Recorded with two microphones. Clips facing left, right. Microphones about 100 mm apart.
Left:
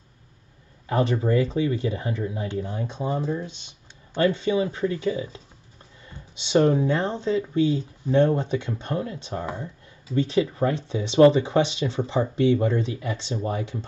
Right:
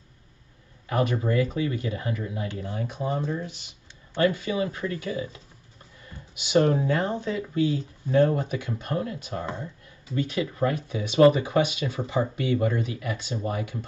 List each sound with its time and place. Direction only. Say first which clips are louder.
0.8 s speech: left 2 dB; 30° left (ahead or behind)